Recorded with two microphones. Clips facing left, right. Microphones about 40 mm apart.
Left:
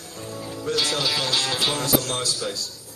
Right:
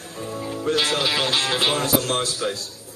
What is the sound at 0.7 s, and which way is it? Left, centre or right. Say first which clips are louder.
Speech: right 3 dB; right.